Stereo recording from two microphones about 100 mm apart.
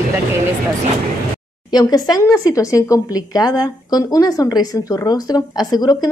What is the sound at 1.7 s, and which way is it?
A woman's voice, 40° left (ahead or behind).